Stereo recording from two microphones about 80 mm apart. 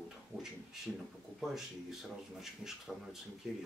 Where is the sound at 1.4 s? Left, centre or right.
Centre.